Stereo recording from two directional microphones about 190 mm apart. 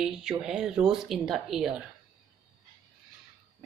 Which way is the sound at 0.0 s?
Centre (ahead or behind).